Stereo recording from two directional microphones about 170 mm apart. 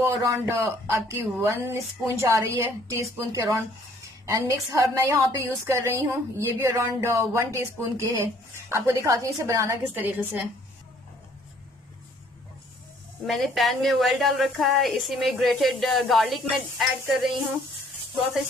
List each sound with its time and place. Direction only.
0.0 s a woman's voice: 20° right (ahead or behind)
13.3 s a woman's voice: centre (ahead or behind)